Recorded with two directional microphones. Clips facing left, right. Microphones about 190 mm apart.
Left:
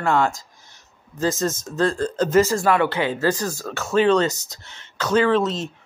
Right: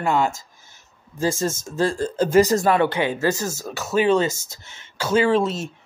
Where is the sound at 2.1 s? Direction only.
10° right (ahead or behind).